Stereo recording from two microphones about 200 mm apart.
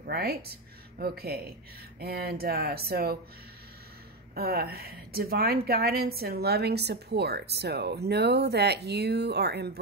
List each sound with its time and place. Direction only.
0.0 s a woman's voice: 50° right (ahead or behind)
4.4 s a woman's voice: 50° right (ahead or behind)